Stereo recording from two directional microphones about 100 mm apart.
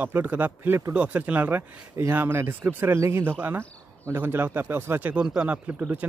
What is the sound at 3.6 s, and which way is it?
Cricket, 15° left (ahead or behind).